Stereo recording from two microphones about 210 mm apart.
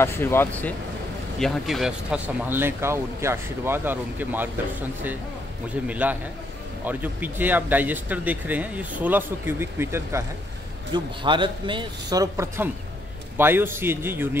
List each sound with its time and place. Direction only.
0.0 s speech: 10° left (ahead or behind); by 4.5 s 10° right (ahead or behind)
5.9 s speech: 5° right (ahead or behind)
10.9 s a man's voice: 20° right (ahead or behind)